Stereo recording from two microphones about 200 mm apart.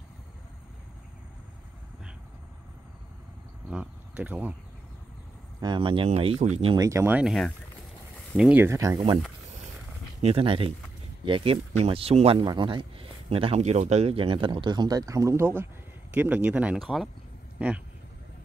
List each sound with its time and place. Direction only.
3.7 s speech: 10° right (ahead or behind)
5.6 s speech: 25° right (ahead or behind)
10.2 s speech: 25° right (ahead or behind); by 17.8 s 5° right (ahead or behind)